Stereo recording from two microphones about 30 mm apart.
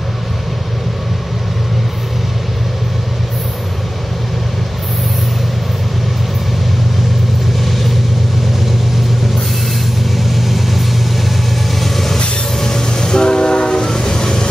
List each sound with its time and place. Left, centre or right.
7.6 s vehicle: centre
10.1 s vehicle: centre
11.8 s vehicle: centre
12.5 s train: centre
13.8 s train: centre